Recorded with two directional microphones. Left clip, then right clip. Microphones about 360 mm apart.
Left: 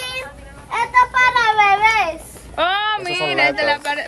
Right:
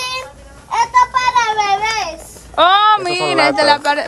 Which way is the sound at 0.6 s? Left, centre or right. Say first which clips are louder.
Right 3 dB; centre.